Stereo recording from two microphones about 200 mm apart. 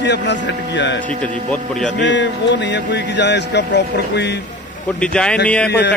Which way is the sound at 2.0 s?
65° left (ahead or behind).